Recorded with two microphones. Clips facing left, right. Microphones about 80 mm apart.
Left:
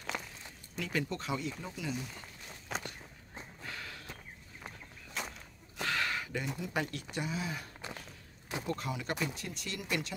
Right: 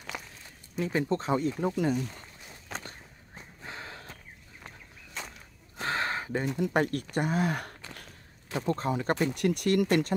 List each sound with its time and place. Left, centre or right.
0.1 s a sound: centre
0.7 s speech: right
1.6 s speech: right
2.7 s walk: centre
3.6 s walk: right
4.6 s a sound: centre
5.8 s a sound: right
6.6 s speech: right
8.6 s speech: right
9.3 s speech: right